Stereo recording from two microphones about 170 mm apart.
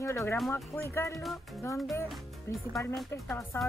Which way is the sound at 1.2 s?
Centre (ahead or behind).